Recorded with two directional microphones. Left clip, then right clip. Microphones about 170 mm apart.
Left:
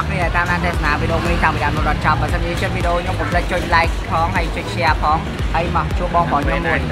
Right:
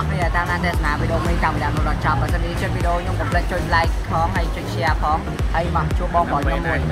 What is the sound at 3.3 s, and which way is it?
Speech, 5° right (ahead or behind).